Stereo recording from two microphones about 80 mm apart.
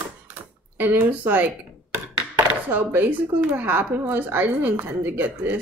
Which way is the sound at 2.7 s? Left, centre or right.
Right.